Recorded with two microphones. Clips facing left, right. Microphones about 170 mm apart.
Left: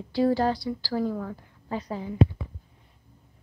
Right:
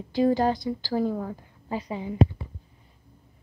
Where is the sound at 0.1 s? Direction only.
20° right (ahead or behind).